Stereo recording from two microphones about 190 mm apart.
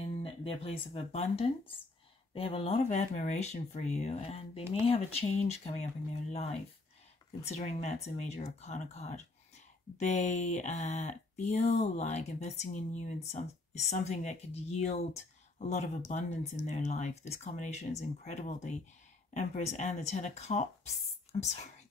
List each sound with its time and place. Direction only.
0.2 s speech: 30° left (ahead or behind)